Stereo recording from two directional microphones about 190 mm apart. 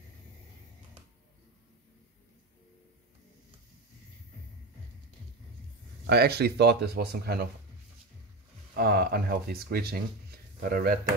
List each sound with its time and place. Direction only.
6.0 s speech: 55° right (ahead or behind)
8.7 s speech: 55° right (ahead or behind)